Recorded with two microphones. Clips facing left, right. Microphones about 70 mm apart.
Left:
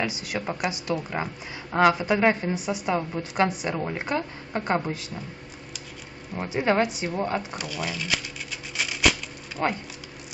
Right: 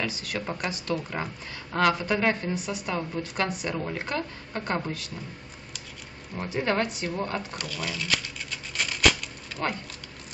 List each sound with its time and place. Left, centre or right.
0.0 s speech: centre
6.3 s speech: centre